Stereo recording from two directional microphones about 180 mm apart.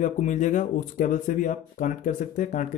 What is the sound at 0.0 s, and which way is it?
Speech, 45° left (ahead or behind).